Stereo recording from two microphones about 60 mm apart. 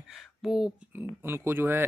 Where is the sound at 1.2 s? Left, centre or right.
Right.